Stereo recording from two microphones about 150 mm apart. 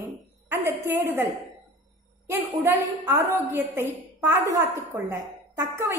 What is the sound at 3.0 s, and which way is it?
A woman's voice, 15° right (ahead or behind).